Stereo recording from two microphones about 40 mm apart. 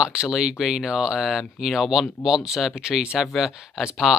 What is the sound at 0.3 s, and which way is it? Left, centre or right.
Speech, centre.